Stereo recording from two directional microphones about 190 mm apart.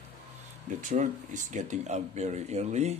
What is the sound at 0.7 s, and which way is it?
Speech, 40° right (ahead or behind).